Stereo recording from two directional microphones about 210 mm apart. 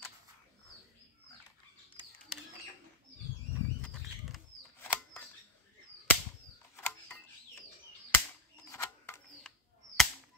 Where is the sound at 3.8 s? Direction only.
10° left (ahead or behind).